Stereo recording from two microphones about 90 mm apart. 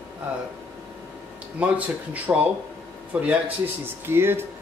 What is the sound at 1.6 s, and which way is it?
Speech, 15° right (ahead or behind).